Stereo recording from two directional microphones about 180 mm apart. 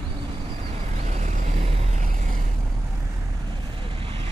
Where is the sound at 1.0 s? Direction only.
40° right (ahead or behind).